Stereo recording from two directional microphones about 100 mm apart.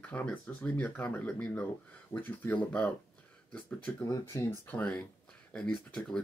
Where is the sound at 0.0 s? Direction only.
15° left (ahead or behind).